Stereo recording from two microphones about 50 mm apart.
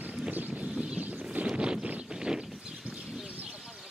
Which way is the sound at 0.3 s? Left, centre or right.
Right.